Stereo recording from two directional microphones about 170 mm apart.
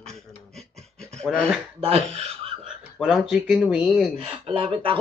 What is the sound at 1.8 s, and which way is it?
Speech, 40° right (ahead or behind).